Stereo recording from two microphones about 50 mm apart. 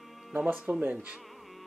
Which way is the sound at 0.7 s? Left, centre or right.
Right.